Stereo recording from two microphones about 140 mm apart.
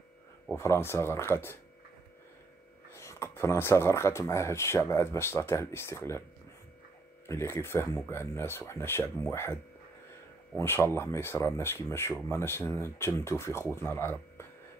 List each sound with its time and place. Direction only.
0.5 s speech: 20° left (ahead or behind)
2.9 s speech: 20° left (ahead or behind)
7.2 s speech: 20° left (ahead or behind)